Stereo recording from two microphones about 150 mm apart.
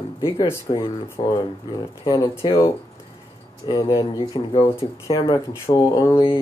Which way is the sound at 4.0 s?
35° left (ahead or behind).